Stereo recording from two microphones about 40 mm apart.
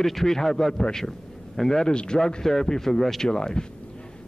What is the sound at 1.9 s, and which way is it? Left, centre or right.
Speech, left.